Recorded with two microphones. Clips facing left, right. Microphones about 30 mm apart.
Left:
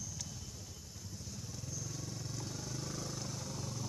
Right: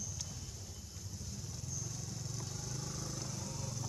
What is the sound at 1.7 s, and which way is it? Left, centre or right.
Vehicle, centre.